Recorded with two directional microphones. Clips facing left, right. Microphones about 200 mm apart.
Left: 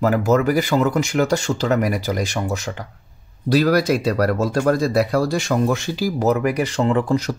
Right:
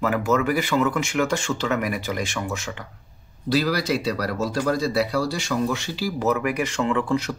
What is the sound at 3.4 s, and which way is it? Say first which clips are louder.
Speech: left 6 dB; 50° left (ahead or behind).